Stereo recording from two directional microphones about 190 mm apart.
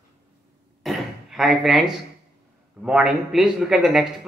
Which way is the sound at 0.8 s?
Centre (ahead or behind).